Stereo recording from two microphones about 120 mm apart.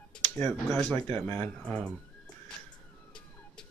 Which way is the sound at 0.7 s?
Centre (ahead or behind).